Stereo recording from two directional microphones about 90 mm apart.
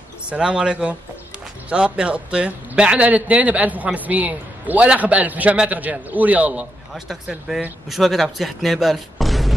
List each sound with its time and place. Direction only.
0.3 s a man's voice: 10° right (ahead or behind)
7.2 s speech: 5° right (ahead or behind)